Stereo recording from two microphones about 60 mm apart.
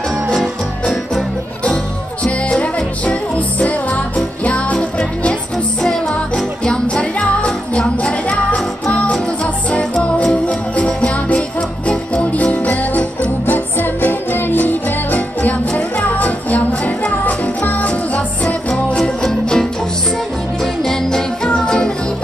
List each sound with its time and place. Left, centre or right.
0.3 s music: centre
2.2 s music: left
19.2 s music: centre